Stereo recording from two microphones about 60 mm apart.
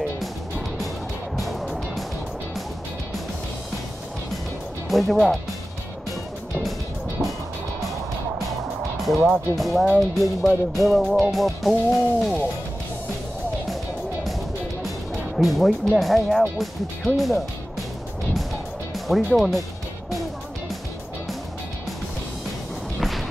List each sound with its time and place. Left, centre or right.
1.3 s music: centre
4.8 s speech: centre
8.9 s speech: centre
15.3 s speech: centre
19.0 s speech: centre
22.9 s music: centre